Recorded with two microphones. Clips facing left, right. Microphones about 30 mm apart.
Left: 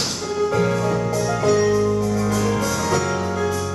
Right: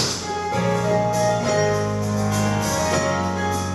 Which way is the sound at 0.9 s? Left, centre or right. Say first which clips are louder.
Right 2 dB; centre.